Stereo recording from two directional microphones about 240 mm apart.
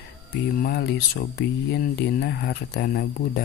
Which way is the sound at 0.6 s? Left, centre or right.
Left.